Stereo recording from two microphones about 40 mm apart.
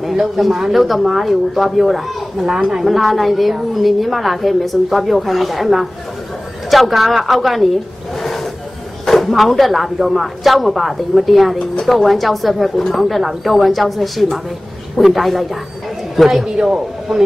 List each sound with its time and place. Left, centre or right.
0.0 s a woman's voice: centre
8.2 s a sound: centre
9.0 s a woman's voice: centre